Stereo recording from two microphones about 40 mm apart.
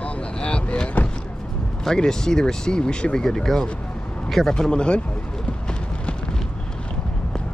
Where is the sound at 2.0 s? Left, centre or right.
Centre.